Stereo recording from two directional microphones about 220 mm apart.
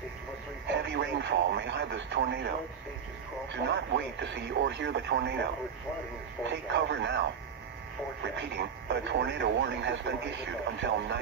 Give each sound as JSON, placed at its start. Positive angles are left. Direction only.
{"t": 0.7, "sound": "radio", "side_deg": -55}
{"t": 3.5, "sound": "speech", "side_deg": -55}